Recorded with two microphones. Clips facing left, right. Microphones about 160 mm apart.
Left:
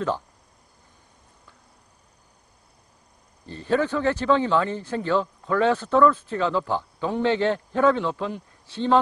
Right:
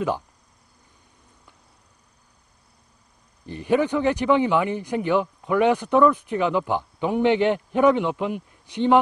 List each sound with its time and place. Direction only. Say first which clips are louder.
3.4 s speech: right 2 dB; 15° right (ahead or behind)